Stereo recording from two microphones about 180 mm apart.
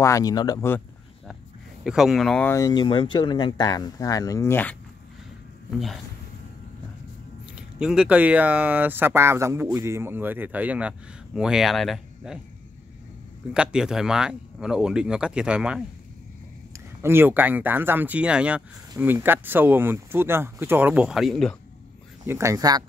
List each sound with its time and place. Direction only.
0.0 s speech: 20° left (ahead or behind)
1.9 s speech: centre (ahead or behind)
2.5 s speech: 20° left (ahead or behind)
7.5 s speech: 5° right (ahead or behind)
13.5 s speech: 5° right (ahead or behind)
22.2 s speech: 15° right (ahead or behind)